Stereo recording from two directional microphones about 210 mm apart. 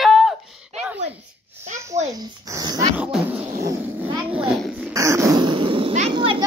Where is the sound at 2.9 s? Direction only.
5° right (ahead or behind).